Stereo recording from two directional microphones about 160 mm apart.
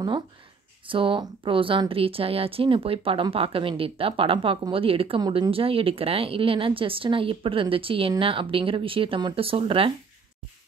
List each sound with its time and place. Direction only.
0.8 s speech: 30° right (ahead or behind)